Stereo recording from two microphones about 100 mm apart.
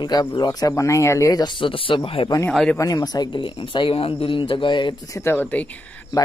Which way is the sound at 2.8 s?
40° left (ahead or behind).